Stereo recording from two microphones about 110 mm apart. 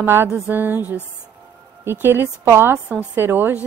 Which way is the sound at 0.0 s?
20° right (ahead or behind).